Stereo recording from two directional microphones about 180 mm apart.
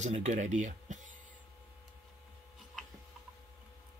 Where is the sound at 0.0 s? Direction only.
40° right (ahead or behind).